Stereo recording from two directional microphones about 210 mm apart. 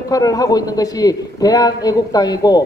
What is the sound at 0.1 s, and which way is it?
A man's voice, 15° left (ahead or behind).